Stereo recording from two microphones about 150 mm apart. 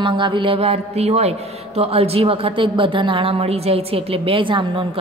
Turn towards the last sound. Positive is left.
turn(degrees=-35)  # may be behind; listen again after turning